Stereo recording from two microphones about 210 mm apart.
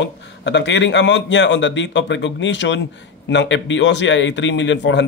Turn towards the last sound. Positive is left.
turn(degrees=60)  # may be behind; listen again after turning